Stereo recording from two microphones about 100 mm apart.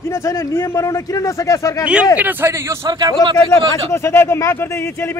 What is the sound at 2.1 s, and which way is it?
Speech, 20° right (ahead or behind).